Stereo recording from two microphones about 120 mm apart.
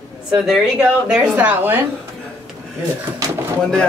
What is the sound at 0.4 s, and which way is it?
Speech, 5° right (ahead or behind).